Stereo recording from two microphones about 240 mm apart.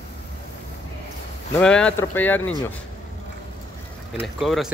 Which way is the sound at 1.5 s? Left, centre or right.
Centre.